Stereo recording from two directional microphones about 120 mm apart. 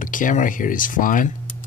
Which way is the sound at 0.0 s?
90° left.